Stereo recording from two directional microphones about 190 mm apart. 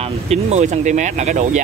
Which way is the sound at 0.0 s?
35° right (ahead or behind).